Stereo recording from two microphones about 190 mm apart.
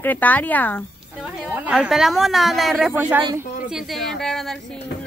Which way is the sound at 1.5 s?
5° right (ahead or behind).